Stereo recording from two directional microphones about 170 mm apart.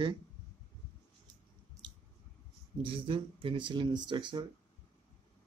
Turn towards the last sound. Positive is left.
turn(degrees=-25)  # may be behind; listen again after turning